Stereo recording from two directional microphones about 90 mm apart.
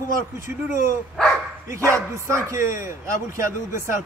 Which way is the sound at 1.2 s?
5° left (ahead or behind).